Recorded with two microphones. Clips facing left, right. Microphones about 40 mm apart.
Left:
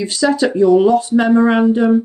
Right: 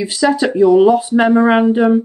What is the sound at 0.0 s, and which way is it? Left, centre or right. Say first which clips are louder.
Speech: right 1 dB; centre.